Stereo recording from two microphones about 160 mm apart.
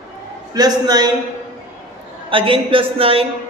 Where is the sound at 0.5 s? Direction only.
25° right (ahead or behind).